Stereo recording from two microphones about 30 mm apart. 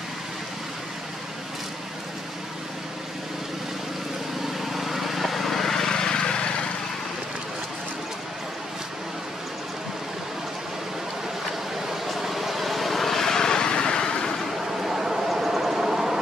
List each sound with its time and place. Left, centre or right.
4.6 s vehicle: centre; by 6.5 s left
12.2 s vehicle: centre; by 14.3 s left
14.8 s a sound: centre